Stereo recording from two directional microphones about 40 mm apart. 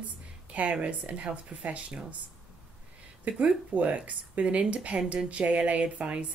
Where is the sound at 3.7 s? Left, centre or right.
Right.